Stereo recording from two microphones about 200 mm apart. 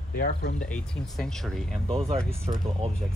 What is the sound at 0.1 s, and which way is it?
Speech, 50° left (ahead or behind).